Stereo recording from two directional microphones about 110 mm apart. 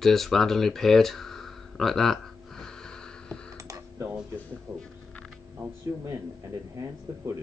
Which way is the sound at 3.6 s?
30° right (ahead or behind).